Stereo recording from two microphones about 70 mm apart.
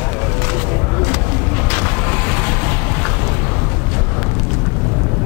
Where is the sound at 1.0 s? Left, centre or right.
Centre.